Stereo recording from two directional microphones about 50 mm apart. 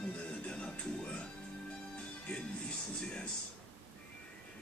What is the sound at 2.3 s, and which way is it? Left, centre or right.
Speech, left.